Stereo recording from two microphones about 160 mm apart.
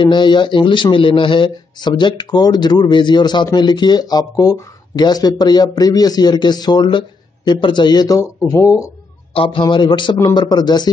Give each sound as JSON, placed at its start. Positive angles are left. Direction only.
{"t": 0.0, "sound": "speech", "side_deg": 30}
{"t": 9.3, "sound": "speech", "side_deg": 35}